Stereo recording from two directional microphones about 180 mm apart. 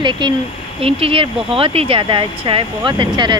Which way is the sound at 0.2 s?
25° right (ahead or behind).